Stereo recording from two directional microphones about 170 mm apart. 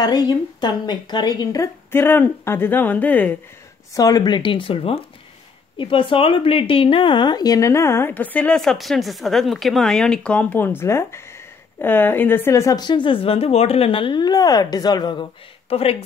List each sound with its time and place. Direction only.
0.0 s speech: 25° left (ahead or behind)
3.9 s speech: 20° left (ahead or behind)